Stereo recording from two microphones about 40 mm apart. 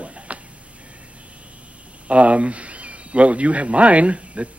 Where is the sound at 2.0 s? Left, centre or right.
Right.